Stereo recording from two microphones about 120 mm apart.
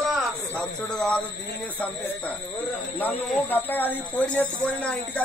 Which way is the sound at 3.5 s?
15° left (ahead or behind).